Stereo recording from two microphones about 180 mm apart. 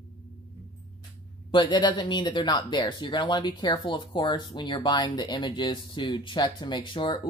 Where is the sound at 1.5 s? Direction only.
25° left (ahead or behind).